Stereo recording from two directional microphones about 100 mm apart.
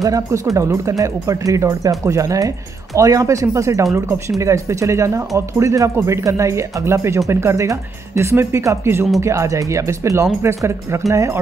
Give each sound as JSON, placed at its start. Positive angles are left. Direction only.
{"t": 0.0, "sound": "speech", "side_deg": -35}